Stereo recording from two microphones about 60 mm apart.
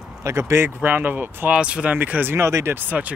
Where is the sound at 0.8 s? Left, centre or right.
Right.